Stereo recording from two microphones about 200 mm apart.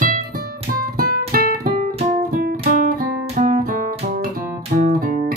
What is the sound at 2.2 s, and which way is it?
Music, 45° right (ahead or behind).